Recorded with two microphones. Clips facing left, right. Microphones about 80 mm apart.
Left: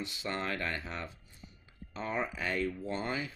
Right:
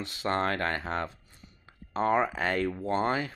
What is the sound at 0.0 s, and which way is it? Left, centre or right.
Speech, right.